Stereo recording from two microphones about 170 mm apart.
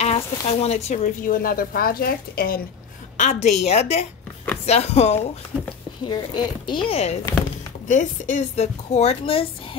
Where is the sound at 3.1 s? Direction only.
45° left (ahead or behind).